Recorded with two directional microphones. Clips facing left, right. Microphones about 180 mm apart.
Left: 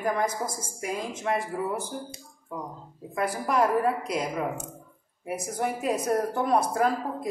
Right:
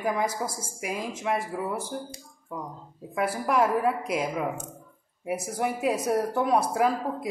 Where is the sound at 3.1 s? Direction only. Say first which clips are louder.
Right 1 dB; 5° right (ahead or behind).